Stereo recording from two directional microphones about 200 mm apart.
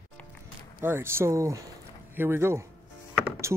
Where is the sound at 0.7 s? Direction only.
10° right (ahead or behind).